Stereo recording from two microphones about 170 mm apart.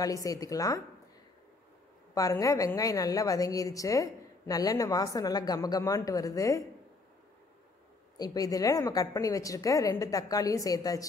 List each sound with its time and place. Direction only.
0.0 s a woman's voice: 20° left (ahead or behind)
2.1 s a woman's voice: 20° left (ahead or behind)
8.2 s a woman's voice: 20° left (ahead or behind)